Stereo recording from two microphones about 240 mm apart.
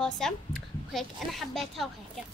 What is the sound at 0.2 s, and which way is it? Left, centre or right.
A child's voice, centre.